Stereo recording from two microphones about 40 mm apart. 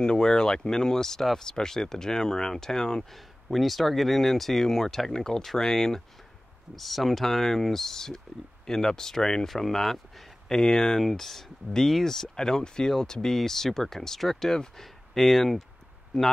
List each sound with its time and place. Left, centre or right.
0.0 s speech: centre
3.2 s speech: centre
6.7 s speech: centre